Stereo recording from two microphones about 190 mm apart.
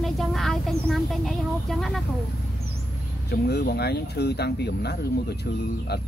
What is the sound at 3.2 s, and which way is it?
Speech, 60° left (ahead or behind).